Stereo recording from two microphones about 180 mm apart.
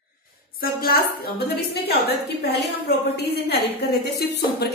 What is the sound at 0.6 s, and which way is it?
A woman's voice, 55° left (ahead or behind).